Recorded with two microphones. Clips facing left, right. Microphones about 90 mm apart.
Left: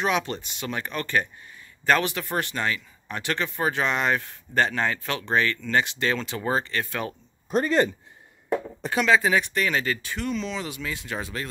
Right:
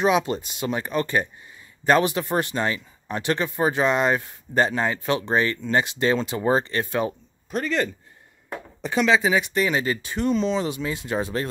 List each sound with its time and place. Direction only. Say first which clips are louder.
0.0 s speech: right 5 dB; 15° right (ahead or behind)
7.5 s speech: left 3 dB; 20° left (ahead or behind)
8.9 s speech: right 1 dB; 5° right (ahead or behind); by 11.4 s 25° right (ahead or behind)